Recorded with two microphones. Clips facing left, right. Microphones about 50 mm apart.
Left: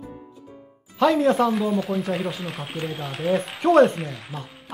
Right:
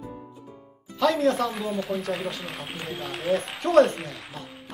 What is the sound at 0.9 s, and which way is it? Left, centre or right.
Speech, centre.